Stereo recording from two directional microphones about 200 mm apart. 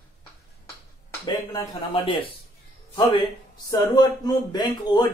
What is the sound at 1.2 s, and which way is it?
A man's voice, 20° left (ahead or behind).